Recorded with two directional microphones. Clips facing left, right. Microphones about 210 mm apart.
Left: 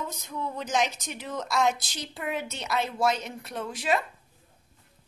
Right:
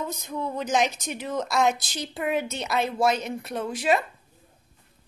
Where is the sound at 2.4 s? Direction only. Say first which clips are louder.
Right 3 dB; 15° right (ahead or behind).